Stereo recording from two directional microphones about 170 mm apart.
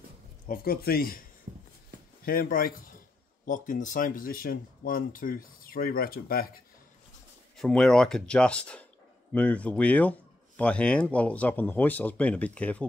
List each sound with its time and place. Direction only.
0.5 s speech: 65° left (ahead or behind)
1.5 s a sound: 45° right (ahead or behind)
2.2 s speech: 60° left (ahead or behind)
7.5 s speech: 5° left (ahead or behind)